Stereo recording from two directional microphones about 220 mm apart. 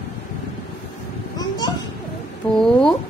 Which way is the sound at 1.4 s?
15° left (ahead or behind).